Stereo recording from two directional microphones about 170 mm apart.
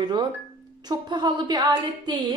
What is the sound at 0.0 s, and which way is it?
Speech, 25° right (ahead or behind).